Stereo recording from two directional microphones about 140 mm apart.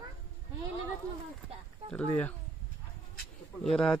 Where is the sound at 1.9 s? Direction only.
10° left (ahead or behind).